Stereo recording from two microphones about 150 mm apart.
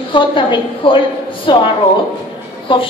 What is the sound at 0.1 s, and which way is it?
A woman's voice, 35° left (ahead or behind).